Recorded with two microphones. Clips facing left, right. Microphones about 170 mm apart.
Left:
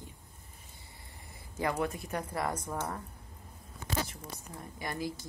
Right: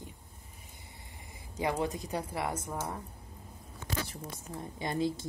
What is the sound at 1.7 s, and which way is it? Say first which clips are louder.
Speech: right 1 dB; 20° right (ahead or behind).